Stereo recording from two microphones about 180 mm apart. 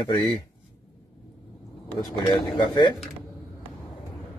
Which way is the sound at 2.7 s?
25° left (ahead or behind).